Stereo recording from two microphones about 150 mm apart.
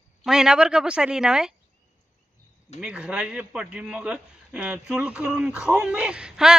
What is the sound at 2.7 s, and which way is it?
Speech, 5° right (ahead or behind).